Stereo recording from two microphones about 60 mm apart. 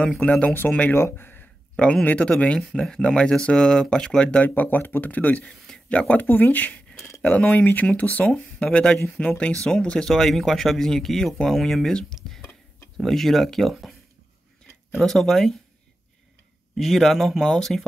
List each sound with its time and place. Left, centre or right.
0.2 s speech: centre
0.9 s speech: left
1.8 s speech: centre
4.6 s speech: left
8.3 s speech: centre
15.0 s speech: centre
16.7 s speech: centre